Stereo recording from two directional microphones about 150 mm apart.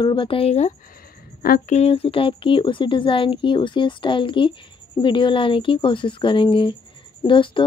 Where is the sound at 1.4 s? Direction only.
75° left (ahead or behind).